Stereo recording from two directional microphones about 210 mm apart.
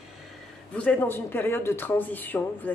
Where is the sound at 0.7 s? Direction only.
5° left (ahead or behind).